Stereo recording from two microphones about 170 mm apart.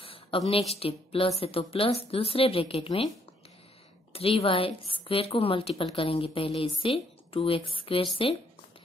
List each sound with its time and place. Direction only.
0.0 s a woman's voice: 30° left (ahead or behind)
4.1 s a woman's voice: 35° left (ahead or behind)